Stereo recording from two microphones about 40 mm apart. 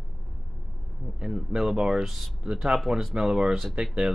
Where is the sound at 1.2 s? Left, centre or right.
Centre.